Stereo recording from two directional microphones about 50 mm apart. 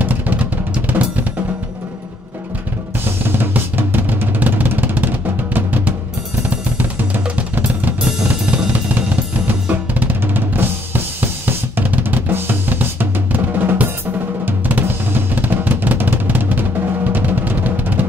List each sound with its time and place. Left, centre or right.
0.0 s drum: right
3.3 s drum: right
7.3 s drum: right
8.0 s drum kit: right
14.4 s drum: right